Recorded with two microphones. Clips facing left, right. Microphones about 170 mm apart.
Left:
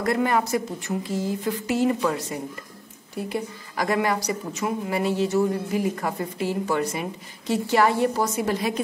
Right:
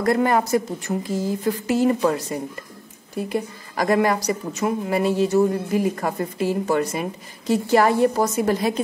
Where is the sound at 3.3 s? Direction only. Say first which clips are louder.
Right 3 dB; 45° right (ahead or behind).